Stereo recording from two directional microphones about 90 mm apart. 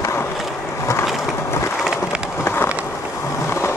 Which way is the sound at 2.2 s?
25° left (ahead or behind).